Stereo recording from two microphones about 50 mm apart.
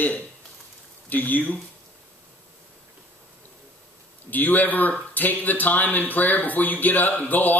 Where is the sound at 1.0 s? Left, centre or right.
Left.